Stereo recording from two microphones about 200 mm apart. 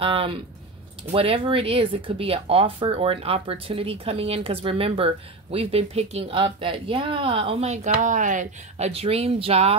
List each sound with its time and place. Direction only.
0.0 s speech: 25° right (ahead or behind)